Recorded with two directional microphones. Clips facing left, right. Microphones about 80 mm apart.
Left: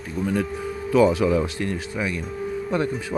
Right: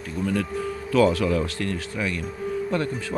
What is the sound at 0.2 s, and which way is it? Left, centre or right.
Speech, centre.